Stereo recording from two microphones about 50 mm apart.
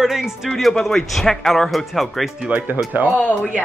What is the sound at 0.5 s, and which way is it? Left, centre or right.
Speech, centre.